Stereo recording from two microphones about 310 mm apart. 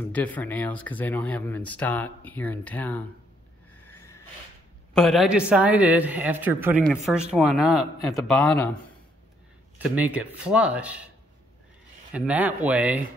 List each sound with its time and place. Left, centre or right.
0.0 s a man's voice: centre
3.9 s a sound: centre
4.9 s a man's voice: centre
9.8 s a man's voice: centre
12.1 s a man's voice: centre